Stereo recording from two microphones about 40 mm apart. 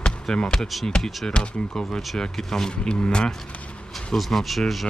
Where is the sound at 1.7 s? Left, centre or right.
Centre.